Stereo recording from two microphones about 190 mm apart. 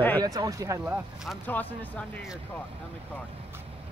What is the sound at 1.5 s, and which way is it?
Speech, 10° left (ahead or behind).